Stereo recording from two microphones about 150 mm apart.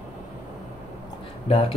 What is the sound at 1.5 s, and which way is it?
Speech, 40° left (ahead or behind).